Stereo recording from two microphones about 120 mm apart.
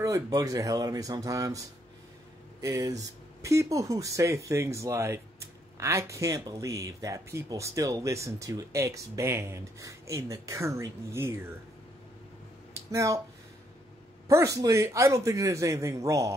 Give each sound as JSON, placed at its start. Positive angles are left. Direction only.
{"t": 0.0, "sound": "speech", "side_deg": -30}
{"t": 12.9, "sound": "speech", "side_deg": -25}
{"t": 14.2, "sound": "speech", "side_deg": -25}